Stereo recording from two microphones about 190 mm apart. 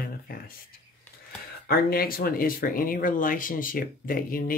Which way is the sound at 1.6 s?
50° left (ahead or behind).